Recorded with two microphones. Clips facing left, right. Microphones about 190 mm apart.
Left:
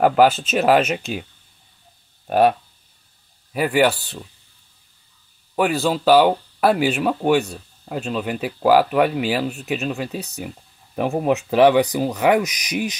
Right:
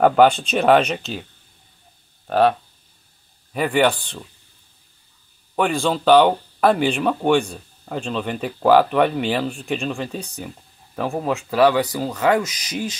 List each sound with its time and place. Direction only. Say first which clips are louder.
0.0 s speech: right 1 dB; 5° left (ahead or behind)
2.2 s speech: left 1 dB; 15° left (ahead or behind)
3.5 s speech: left 1 dB; 5° left (ahead or behind)
5.6 s speech: left 1 dB; 5° left (ahead or behind)
11.0 s speech: left 3 dB; 20° left (ahead or behind)